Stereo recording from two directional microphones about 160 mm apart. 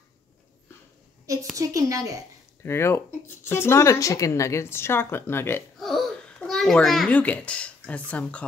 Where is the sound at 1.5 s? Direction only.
20° right (ahead or behind).